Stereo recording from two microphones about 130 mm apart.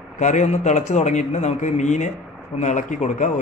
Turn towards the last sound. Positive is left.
turn(degrees=70)  # may be behind; listen again after turning